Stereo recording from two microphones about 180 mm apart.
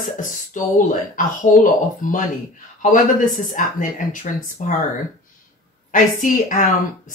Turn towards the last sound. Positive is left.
turn(degrees=45)  # may be behind; listen again after turning